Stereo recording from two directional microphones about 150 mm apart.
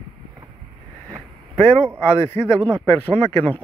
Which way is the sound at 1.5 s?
10° left (ahead or behind).